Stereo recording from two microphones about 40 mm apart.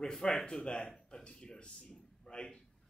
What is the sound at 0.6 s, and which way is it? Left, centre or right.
A man's voice, left.